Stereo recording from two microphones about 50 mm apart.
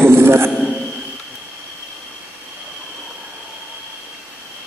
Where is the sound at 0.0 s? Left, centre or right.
Right.